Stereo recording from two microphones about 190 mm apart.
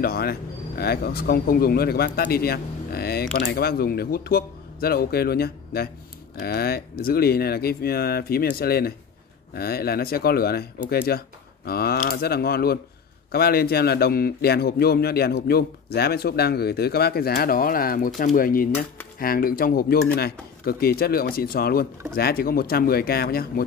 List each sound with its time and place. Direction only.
0.0 s speech: 55° left (ahead or behind)